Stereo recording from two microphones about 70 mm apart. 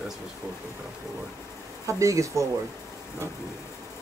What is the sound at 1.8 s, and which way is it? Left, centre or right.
Speech, right.